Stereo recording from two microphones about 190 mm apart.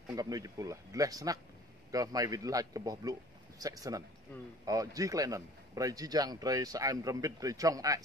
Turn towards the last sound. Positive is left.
turn(degrees=-20)  # may be behind; listen again after turning